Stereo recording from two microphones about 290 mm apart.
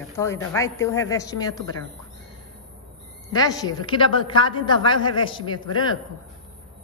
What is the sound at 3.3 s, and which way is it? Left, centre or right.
A woman's voice, centre.